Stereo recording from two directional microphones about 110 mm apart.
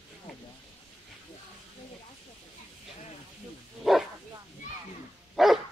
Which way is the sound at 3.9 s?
Centre (ahead or behind).